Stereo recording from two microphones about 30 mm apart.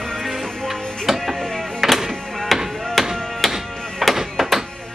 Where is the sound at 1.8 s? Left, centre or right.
Centre.